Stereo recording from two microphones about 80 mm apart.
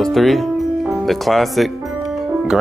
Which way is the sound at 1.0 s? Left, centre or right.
Centre.